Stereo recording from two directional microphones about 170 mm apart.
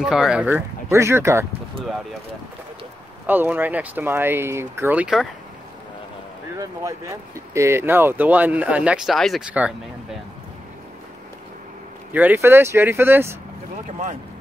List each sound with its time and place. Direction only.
0.0 s speech: 5° right (ahead or behind)
3.3 s speech: 10° right (ahead or behind)
6.5 s speech: 20° right (ahead or behind)
12.1 s speech: 10° right (ahead or behind)
13.8 s speech: 45° right (ahead or behind)